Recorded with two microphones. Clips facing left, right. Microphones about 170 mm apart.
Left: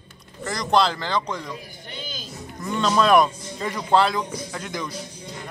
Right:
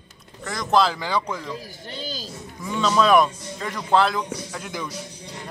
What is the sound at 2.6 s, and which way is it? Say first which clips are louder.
Speech: even; centre (ahead or behind).